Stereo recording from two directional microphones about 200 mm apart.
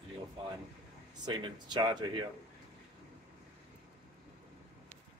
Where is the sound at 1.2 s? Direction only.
20° right (ahead or behind).